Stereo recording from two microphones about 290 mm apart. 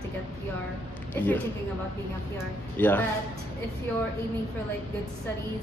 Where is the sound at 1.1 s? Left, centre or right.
Centre.